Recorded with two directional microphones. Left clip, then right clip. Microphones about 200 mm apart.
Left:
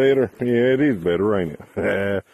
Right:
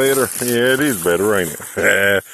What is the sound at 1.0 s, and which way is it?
Speech, 5° left (ahead or behind).